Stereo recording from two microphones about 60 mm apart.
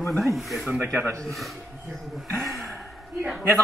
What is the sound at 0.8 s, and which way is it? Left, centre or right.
Speech, right.